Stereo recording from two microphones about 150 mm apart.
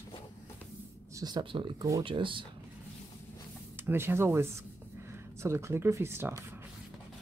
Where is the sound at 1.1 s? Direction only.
25° right (ahead or behind).